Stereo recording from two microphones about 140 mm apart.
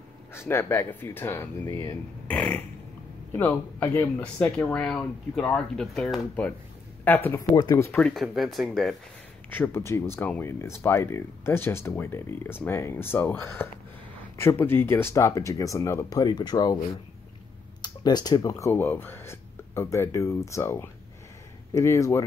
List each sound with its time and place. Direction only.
0.3 s speech: 20° left (ahead or behind)
2.2 s a sound: 10° left (ahead or behind)
3.3 s speech: 15° left (ahead or behind)
7.5 s speech: 25° left (ahead or behind)
7.9 s speech: 5° left (ahead or behind)
9.5 s speech: 15° left (ahead or behind)
17.8 s speech: 30° left (ahead or behind)